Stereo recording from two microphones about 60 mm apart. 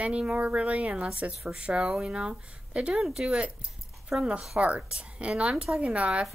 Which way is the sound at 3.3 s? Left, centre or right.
Centre.